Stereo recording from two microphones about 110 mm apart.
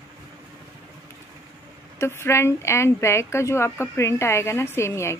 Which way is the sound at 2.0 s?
25° left (ahead or behind).